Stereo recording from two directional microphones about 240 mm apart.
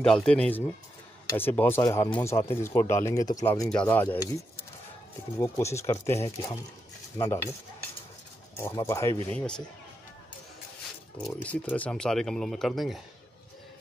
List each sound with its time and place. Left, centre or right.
0.0 s speech: centre
5.4 s speech: centre
8.5 s speech: centre
11.2 s speech: centre